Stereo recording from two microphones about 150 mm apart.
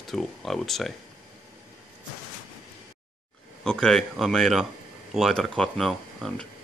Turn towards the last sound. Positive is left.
turn(degrees=5)  # may be behind; listen again after turning